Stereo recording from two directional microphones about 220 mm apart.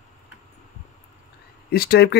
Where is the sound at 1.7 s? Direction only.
45° left (ahead or behind).